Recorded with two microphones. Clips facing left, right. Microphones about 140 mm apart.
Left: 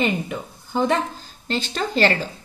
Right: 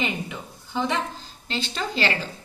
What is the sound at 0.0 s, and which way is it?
A woman's voice, 50° left (ahead or behind).